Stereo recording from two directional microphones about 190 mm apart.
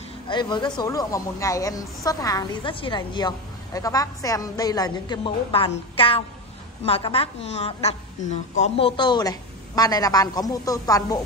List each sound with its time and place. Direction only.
0.3 s a woman's voice: 25° left (ahead or behind)